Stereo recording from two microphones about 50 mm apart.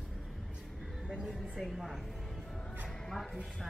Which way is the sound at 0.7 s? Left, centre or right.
Centre.